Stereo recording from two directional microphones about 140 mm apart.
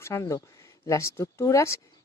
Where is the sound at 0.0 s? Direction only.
20° left (ahead or behind).